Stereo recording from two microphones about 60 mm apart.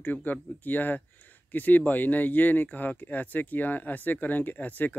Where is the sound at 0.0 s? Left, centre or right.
Left.